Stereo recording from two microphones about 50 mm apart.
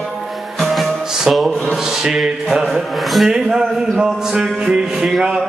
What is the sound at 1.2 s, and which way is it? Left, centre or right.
Music, centre.